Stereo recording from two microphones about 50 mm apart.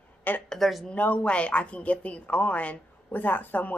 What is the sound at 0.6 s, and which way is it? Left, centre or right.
Speech, centre.